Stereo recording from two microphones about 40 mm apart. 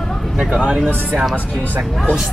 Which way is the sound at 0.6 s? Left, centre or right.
Right.